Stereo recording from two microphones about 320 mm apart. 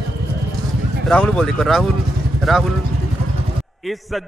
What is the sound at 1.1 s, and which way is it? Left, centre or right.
Speech, centre.